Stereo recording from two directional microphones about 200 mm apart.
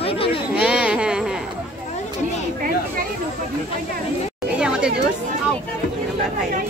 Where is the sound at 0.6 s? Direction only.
5° right (ahead or behind).